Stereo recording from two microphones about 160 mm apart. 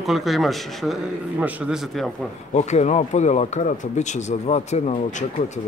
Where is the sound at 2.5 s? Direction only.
45° left (ahead or behind).